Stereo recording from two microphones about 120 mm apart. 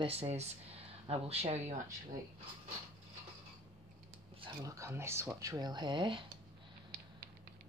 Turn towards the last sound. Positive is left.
turn(degrees=-40)  # may be behind; listen again after turning